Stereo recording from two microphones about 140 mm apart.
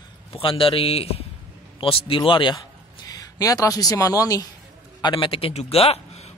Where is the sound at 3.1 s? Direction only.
25° left (ahead or behind).